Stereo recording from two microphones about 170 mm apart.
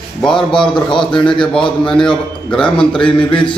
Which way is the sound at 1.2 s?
30° left (ahead or behind).